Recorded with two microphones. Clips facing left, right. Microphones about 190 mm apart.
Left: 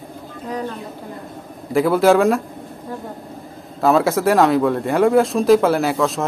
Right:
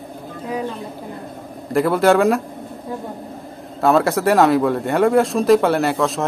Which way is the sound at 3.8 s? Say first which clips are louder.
Even; centre (ahead or behind).